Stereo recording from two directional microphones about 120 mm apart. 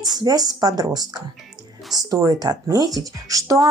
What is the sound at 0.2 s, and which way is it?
Speech, 30° right (ahead or behind).